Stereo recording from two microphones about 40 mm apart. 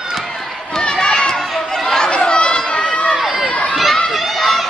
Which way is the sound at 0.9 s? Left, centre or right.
Centre.